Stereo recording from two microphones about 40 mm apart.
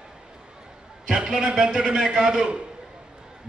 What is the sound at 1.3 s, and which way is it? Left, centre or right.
A man's voice, centre.